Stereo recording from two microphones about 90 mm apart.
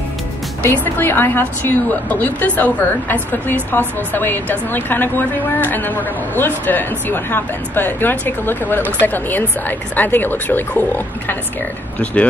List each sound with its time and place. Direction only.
0.6 s a woman's voice: 25° left (ahead or behind)
12.0 s speech: 15° left (ahead or behind)